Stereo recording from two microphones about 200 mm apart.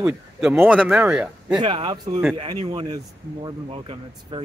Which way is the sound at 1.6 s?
25° right (ahead or behind).